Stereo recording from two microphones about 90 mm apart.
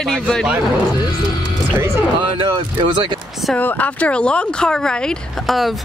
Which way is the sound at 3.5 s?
20° left (ahead or behind).